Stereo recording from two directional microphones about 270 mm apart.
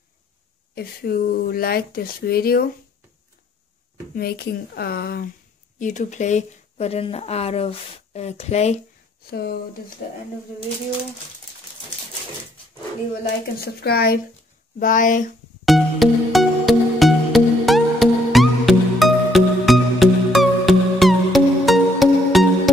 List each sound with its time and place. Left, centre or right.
0.7 s speech: left
4.1 s speech: left
9.3 s speech: left
13.6 s speech: left
15.6 s music: centre